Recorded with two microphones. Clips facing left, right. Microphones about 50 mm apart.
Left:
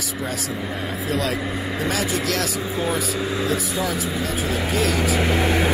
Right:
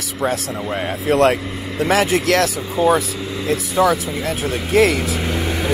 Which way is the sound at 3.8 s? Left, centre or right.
Right.